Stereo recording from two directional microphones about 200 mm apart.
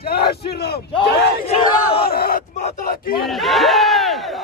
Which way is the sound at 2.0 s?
50° left (ahead or behind).